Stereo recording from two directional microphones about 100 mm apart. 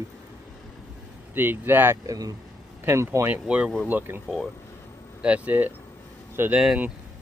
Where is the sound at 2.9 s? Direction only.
25° right (ahead or behind).